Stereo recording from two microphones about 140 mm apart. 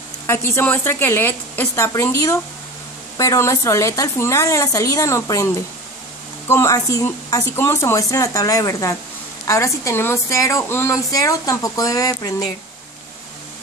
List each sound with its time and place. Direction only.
0.3 s a woman's voice: 20° left (ahead or behind)